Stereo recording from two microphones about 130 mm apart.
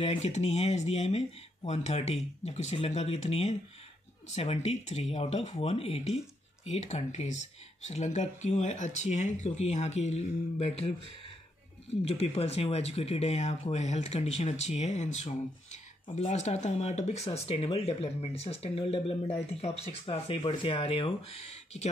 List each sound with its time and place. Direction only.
0.0 s speech: 55° left (ahead or behind)
12.0 s speech: 50° left (ahead or behind)